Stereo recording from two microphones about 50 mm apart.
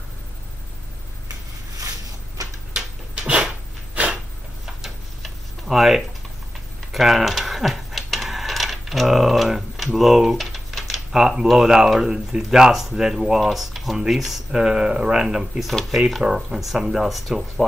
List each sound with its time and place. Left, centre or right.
4.8 s tick-tock: centre
6.9 s speech: centre